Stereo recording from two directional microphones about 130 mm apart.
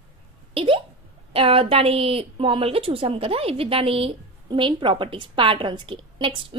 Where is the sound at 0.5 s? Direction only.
45° right (ahead or behind).